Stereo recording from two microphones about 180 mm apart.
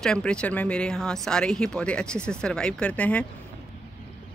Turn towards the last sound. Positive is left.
turn(degrees=5)  # may be behind; listen again after turning